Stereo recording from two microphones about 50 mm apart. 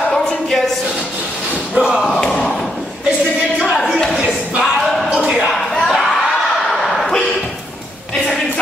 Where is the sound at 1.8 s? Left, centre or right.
Centre.